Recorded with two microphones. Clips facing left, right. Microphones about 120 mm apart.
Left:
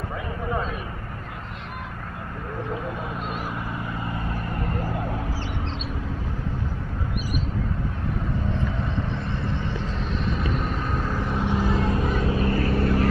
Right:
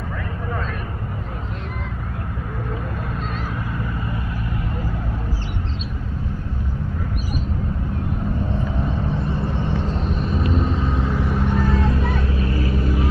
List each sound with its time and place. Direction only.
10.5 s vehicle: 30° right (ahead or behind)
10.9 s vehicle: 15° right (ahead or behind); by 11.8 s 5° left (ahead or behind)
11.9 s vehicle: 35° left (ahead or behind)
12.6 s vehicle: 60° left (ahead or behind)